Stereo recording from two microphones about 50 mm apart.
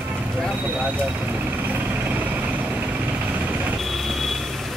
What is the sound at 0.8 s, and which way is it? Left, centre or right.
Vehicle, right.